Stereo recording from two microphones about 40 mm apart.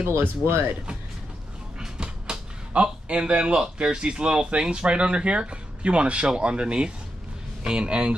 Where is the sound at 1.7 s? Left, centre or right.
Centre.